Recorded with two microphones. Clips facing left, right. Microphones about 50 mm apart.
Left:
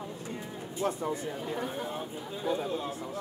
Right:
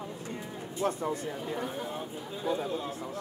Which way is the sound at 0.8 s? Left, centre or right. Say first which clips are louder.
Right 1 dB; right.